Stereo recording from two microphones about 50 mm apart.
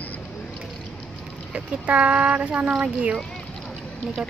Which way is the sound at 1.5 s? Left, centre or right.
Right.